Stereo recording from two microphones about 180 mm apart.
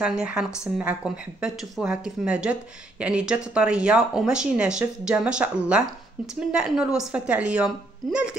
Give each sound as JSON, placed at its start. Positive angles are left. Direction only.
{"t": 0.0, "sound": "speech", "side_deg": -5}
{"t": 6.2, "sound": "speech", "side_deg": -50}
{"t": 6.5, "sound": "speech", "side_deg": -5}